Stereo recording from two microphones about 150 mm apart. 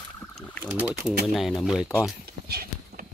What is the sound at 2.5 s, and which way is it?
Clip-clop, 90° right.